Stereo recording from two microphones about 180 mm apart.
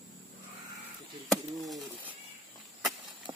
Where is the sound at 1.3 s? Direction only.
Centre (ahead or behind).